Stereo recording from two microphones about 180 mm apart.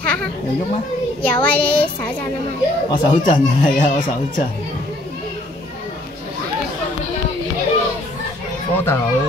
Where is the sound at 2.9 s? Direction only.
25° left (ahead or behind).